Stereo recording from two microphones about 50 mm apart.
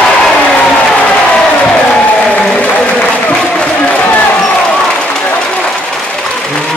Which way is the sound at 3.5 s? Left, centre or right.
Left.